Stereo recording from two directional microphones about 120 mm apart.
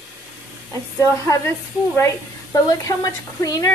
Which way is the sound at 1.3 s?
25° left (ahead or behind).